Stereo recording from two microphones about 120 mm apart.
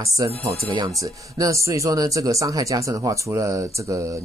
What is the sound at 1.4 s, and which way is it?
Speech, 25° right (ahead or behind).